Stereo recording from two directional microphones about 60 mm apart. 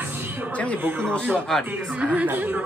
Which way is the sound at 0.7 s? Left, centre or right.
Right.